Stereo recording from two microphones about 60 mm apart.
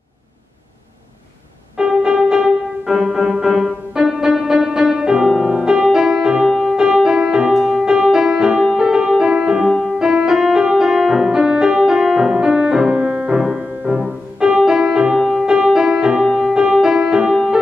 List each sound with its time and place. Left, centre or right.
1.8 s music: centre
14.4 s music: centre